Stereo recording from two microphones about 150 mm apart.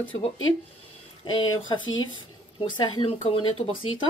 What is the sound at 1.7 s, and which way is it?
Speech, 30° left (ahead or behind).